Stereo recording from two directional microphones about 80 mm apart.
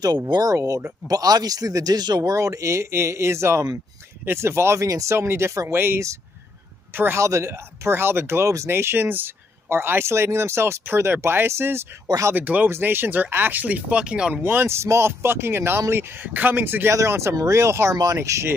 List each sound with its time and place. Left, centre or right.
0.0 s speech: right
4.8 s speech: right
5.1 s speech: right
7.2 s speech: right
12.4 s speech: right
14.4 s speech: right
16.9 s speech: right